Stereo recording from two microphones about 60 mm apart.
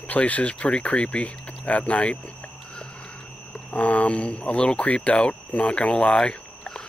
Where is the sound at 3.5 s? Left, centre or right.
Left.